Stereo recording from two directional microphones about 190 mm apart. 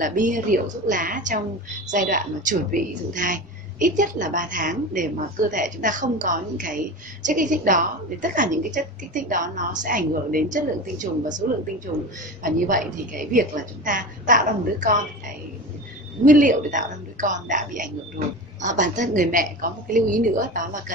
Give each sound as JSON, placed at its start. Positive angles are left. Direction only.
{"t": 0.0, "sound": "a woman's voice", "side_deg": -45}
{"t": 12.4, "sound": "a woman's voice", "side_deg": -45}
{"t": 16.3, "sound": "a woman's voice", "side_deg": -45}